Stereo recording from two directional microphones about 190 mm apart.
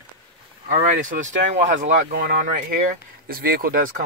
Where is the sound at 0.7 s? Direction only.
40° right (ahead or behind).